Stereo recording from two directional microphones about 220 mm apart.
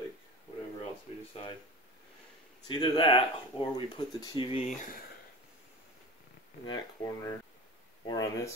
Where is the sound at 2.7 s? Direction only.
20° left (ahead or behind).